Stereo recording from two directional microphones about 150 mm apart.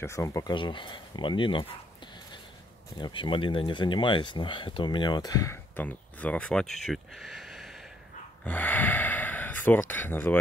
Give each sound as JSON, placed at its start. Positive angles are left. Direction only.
{"t": 0.0, "sound": "speech", "side_deg": 20}
{"t": 3.0, "sound": "speech", "side_deg": 35}
{"t": 8.5, "sound": "speech", "side_deg": 10}